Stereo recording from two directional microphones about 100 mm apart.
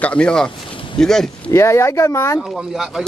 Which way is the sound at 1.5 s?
30° left (ahead or behind).